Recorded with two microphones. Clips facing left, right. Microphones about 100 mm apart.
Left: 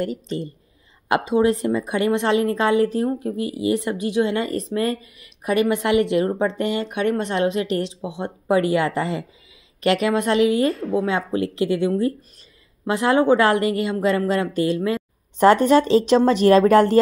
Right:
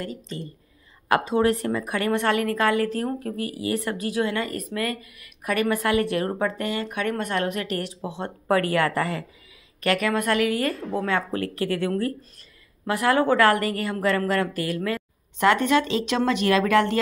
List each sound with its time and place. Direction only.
1.0 s a woman's voice: 20° left (ahead or behind)
15.3 s speech: 35° left (ahead or behind)